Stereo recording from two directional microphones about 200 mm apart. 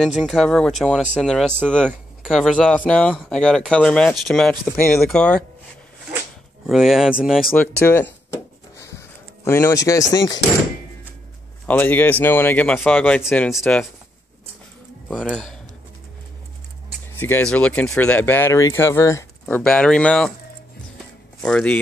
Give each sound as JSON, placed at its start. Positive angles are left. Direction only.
{"t": 0.0, "sound": "speech", "side_deg": 0}
{"t": 6.1, "sound": "whip", "side_deg": 0}
{"t": 7.8, "sound": "speech", "side_deg": 10}
{"t": 8.7, "sound": "chop", "side_deg": 15}
{"t": 11.6, "sound": "speech", "side_deg": 10}
{"t": 15.0, "sound": "speech", "side_deg": 0}
{"t": 17.2, "sound": "speech", "side_deg": 10}
{"t": 21.4, "sound": "speech", "side_deg": 5}